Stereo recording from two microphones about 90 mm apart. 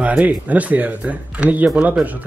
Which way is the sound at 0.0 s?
15° right (ahead or behind).